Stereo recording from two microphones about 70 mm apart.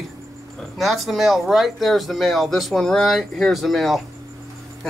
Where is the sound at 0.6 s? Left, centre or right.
Centre.